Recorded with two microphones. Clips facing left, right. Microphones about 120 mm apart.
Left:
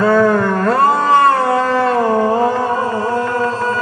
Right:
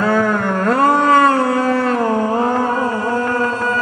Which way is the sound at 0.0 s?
40° left (ahead or behind).